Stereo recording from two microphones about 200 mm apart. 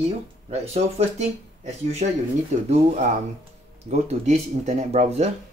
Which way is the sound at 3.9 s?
35° right (ahead or behind).